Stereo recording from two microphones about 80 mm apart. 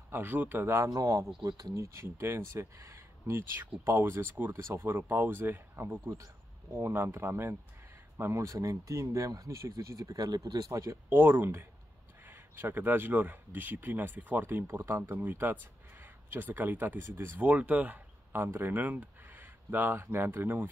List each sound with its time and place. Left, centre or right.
0.1 s speech: right
0.8 s speech: right